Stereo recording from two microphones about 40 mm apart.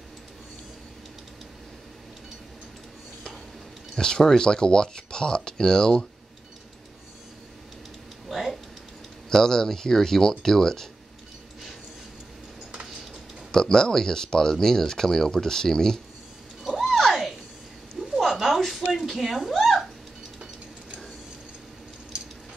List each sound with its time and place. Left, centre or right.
3.9 s speech: centre
8.3 s a sound: centre
9.3 s speech: centre
13.5 s speech: centre
16.8 s a sound: centre
19.6 s cat: centre